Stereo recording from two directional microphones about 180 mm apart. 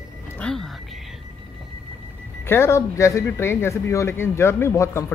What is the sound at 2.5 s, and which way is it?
Speech, 15° left (ahead or behind).